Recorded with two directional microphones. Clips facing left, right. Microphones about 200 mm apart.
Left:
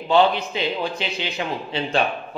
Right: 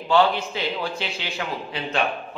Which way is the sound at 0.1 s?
20° left (ahead or behind).